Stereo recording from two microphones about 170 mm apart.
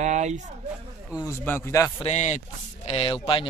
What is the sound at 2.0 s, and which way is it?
Speech, 40° left (ahead or behind).